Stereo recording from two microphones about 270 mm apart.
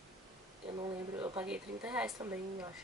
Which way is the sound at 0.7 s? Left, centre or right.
Centre.